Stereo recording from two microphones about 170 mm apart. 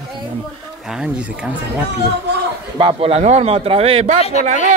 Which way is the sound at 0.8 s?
5° right (ahead or behind).